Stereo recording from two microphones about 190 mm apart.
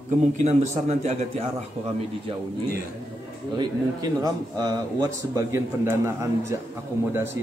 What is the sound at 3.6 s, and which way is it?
A man's voice, 20° right (ahead or behind).